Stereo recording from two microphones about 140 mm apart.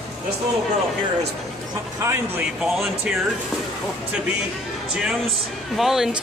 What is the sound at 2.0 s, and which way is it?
Speech, 20° right (ahead or behind).